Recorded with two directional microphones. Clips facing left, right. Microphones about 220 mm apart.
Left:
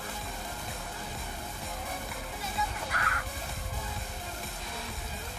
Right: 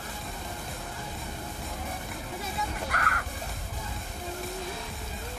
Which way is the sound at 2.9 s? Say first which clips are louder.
Right 3 dB; 55° right (ahead or behind).